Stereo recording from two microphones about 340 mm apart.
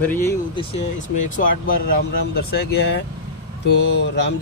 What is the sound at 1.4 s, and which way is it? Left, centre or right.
Speech, left.